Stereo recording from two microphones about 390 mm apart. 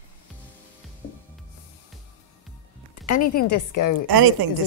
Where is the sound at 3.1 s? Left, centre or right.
Left.